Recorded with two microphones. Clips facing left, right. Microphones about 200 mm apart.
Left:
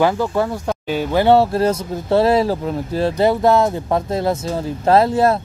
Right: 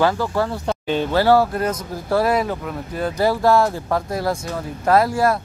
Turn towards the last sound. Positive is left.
turn(degrees=25)  # may be behind; listen again after turning